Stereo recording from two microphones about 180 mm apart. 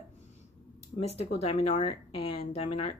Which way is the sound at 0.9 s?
35° left (ahead or behind).